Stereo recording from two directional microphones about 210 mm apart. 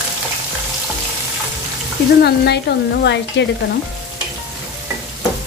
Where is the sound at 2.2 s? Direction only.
50° left (ahead or behind).